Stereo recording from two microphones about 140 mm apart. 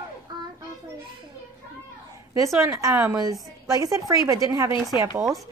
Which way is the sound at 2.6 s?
20° right (ahead or behind).